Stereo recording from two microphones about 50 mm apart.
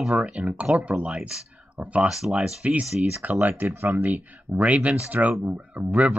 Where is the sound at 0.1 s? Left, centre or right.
Right.